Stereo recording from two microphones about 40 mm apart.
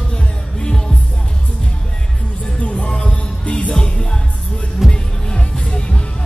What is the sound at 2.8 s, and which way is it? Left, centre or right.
Music, left.